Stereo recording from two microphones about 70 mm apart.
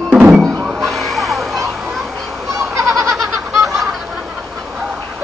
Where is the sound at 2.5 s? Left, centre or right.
Right.